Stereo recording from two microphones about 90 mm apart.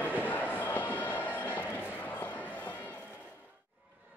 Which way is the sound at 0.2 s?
20° left (ahead or behind).